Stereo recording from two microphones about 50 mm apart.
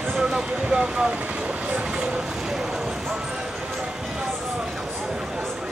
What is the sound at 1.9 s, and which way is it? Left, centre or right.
Vehicle, centre.